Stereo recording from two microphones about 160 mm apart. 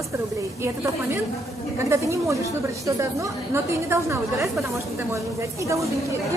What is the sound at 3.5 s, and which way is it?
A woman's voice, 15° right (ahead or behind).